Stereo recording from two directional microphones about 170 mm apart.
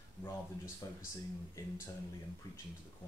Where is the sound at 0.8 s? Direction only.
25° left (ahead or behind).